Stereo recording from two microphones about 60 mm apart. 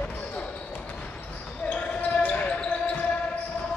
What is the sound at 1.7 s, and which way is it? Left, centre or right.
Basketball bounce, left.